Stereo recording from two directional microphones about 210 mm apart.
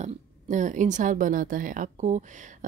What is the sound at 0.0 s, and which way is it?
Speech, 35° right (ahead or behind).